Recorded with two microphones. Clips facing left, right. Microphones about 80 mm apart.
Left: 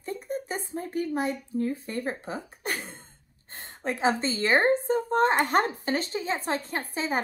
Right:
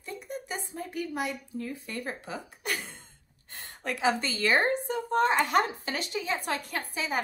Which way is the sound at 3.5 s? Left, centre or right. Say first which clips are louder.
Left 3 dB; left.